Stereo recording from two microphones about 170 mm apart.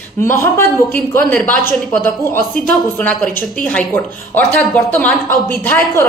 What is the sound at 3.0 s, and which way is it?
A woman's voice, 10° left (ahead or behind).